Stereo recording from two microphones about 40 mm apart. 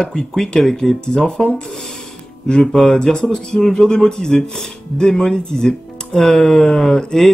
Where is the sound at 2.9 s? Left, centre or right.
Centre.